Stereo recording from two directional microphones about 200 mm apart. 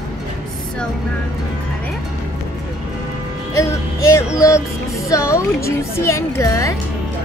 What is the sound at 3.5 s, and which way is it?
Speech, 15° left (ahead or behind).